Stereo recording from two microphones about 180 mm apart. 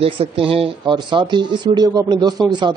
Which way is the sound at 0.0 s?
30° right (ahead or behind).